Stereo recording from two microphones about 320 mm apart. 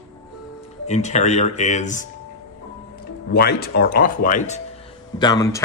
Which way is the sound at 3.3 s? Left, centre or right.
Left.